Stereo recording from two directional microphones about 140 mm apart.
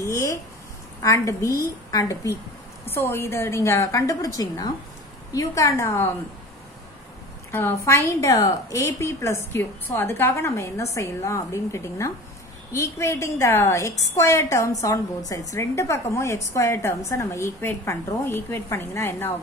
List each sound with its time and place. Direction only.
0.0 s a sound: 20° left (ahead or behind)
1.0 s a woman's voice: 20° left (ahead or behind)
7.5 s a woman's voice: 20° left (ahead or behind)